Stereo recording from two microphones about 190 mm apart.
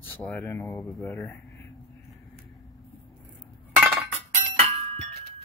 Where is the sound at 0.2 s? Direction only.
5° left (ahead or behind).